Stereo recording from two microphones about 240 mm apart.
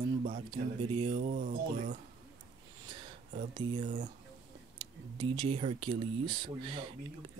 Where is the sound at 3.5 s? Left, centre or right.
Centre.